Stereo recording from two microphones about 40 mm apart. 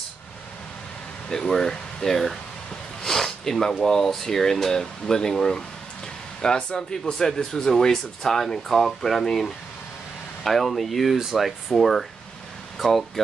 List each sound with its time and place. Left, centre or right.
1.3 s speech: centre